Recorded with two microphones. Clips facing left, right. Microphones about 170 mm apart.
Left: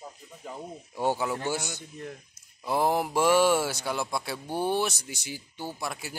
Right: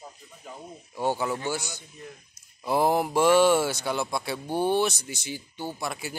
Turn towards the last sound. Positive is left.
turn(degrees=0)  # may be behind; listen again after turning